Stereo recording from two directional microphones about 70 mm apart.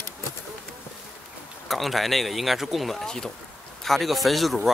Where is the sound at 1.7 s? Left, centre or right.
Centre.